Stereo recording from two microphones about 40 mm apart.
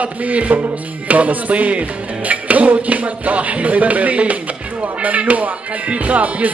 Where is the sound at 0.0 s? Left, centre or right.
Right.